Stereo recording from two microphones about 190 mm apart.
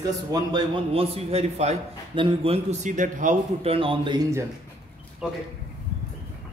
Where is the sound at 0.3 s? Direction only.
20° right (ahead or behind).